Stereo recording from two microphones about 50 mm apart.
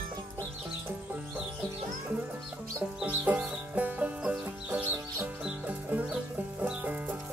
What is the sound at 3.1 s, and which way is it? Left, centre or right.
Music, right.